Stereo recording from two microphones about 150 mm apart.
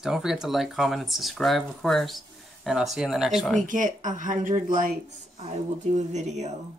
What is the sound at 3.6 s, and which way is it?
Speech, 60° right (ahead or behind).